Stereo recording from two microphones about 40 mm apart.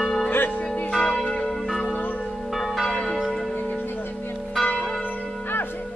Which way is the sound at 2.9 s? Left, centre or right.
Centre.